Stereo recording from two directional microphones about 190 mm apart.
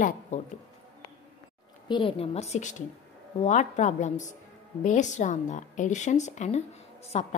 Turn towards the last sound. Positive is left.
turn(degrees=35)  # may be behind; listen again after turning